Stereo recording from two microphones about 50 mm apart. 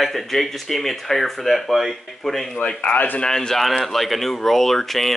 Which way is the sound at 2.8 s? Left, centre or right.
Left.